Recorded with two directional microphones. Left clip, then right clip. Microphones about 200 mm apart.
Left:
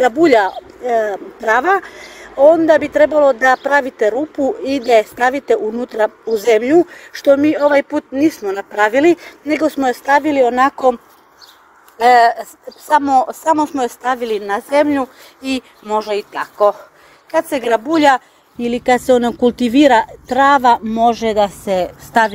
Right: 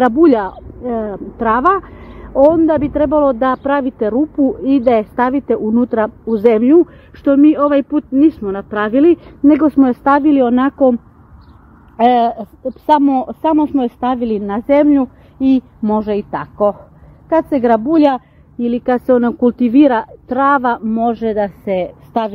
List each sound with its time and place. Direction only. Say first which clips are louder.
0.0 s a woman's voice: even; 5° right (ahead or behind)
12.1 s a woman's voice: left 7 dB; 10° right (ahead or behind)